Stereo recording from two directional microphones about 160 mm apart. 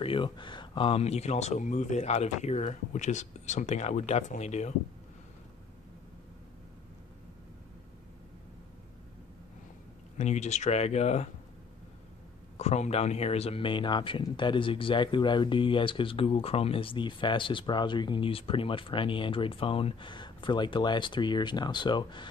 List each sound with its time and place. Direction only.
0.0 s speech: 35° left (ahead or behind)
10.1 s speech: 45° left (ahead or behind)
12.5 s speech: 45° left (ahead or behind)